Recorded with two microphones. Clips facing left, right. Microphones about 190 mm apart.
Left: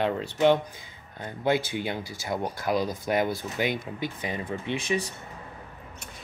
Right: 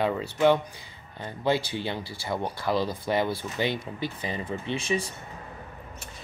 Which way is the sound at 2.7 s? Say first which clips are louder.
Even; 15° left (ahead or behind).